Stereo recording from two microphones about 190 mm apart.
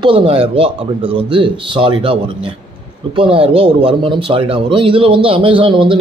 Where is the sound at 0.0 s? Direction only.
25° right (ahead or behind).